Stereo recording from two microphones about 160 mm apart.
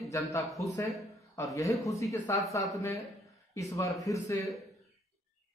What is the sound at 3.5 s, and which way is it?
Speech, 20° left (ahead or behind).